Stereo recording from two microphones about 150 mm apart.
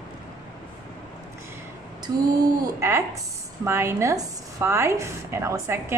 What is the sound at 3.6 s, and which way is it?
A woman's voice, 15° right (ahead or behind).